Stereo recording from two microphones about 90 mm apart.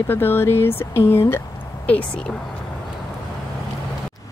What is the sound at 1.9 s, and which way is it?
Speech, 15° left (ahead or behind).